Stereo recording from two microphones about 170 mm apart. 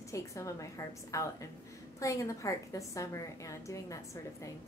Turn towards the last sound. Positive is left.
turn(degrees=20)  # may be behind; listen again after turning